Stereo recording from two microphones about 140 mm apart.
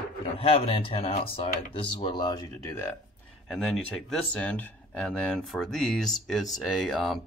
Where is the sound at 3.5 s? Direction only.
Centre (ahead or behind).